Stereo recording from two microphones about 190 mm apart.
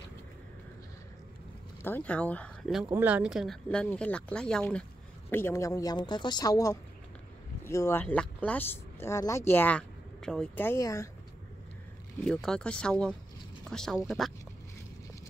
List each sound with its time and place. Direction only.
1.8 s speech: 10° left (ahead or behind)
12.3 s speech: 5° left (ahead or behind)